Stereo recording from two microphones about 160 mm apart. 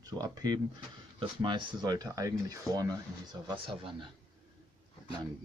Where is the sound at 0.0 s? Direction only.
25° right (ahead or behind).